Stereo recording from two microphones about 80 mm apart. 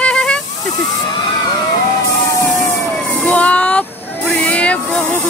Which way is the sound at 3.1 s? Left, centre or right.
Centre.